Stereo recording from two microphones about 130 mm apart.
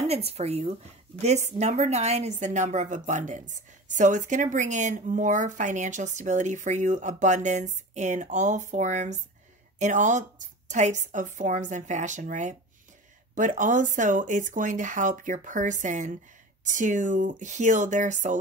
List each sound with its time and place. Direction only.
0.1 s a woman's voice: 50° right (ahead or behind); by 12.5 s 65° right (ahead or behind)
13.3 s a woman's voice: 80° right